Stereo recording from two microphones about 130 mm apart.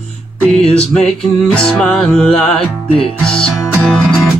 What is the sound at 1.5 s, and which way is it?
Music, 5° left (ahead or behind).